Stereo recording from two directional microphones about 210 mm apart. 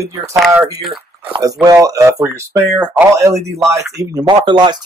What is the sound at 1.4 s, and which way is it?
Speech, 15° right (ahead or behind).